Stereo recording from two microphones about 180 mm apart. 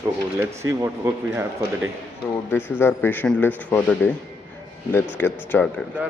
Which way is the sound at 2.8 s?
10° left (ahead or behind).